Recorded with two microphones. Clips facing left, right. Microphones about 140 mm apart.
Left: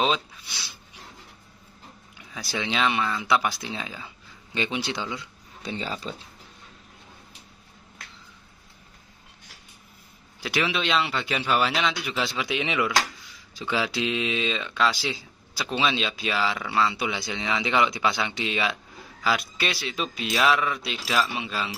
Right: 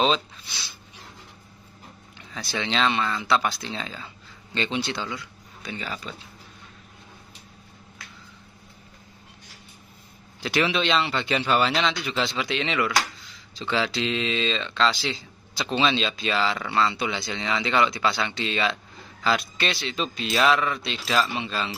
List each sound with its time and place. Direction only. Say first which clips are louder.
0.0 s speech: right 2 dB; 10° left (ahead or behind)
2.1 s speech: right 1 dB; 10° left (ahead or behind); by 6.2 s 30° left (ahead or behind)
10.4 s a man's voice: right 3 dB; 5° left (ahead or behind)